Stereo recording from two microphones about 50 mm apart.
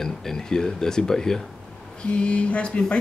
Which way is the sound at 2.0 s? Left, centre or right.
Left.